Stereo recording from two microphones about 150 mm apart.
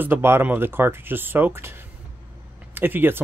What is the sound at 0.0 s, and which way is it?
Speech, 15° right (ahead or behind).